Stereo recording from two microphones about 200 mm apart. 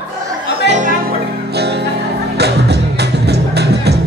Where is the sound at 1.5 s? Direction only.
55° right (ahead or behind).